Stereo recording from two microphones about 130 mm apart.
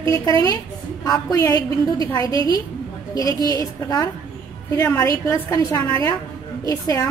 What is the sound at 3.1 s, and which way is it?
A woman's voice, 30° left (ahead or behind).